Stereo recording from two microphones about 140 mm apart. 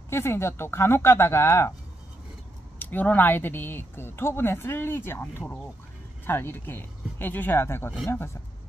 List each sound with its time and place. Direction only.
0.1 s speech: 20° left (ahead or behind)
2.8 s speech: 10° left (ahead or behind)